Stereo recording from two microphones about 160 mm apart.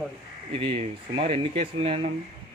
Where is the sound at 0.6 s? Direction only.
40° right (ahead or behind).